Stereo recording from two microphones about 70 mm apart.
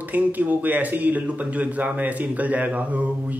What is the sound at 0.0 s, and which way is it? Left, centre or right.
A man's voice, right.